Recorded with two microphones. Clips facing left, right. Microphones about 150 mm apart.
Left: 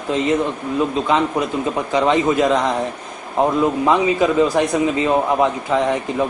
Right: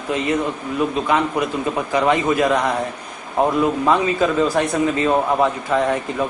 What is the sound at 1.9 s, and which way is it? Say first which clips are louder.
A man's voice: left 1 dB; 25° left (ahead or behind).